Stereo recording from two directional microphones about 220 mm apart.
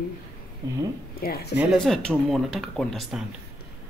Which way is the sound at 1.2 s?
45° left (ahead or behind).